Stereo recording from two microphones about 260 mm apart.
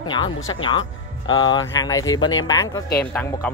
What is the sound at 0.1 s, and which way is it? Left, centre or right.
Speech, centre.